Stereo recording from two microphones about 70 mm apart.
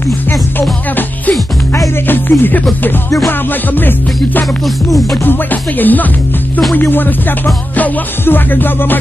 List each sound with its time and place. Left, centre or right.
0.3 s music: left